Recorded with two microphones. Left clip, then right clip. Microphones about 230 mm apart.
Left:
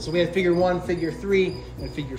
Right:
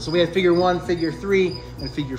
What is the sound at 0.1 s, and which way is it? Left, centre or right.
A man's voice, centre.